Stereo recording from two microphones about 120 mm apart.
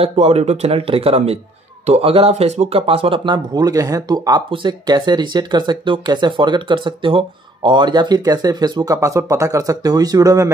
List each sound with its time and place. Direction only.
0.0 s speech: 60° right (ahead or behind)
3.3 s speech: 35° right (ahead or behind)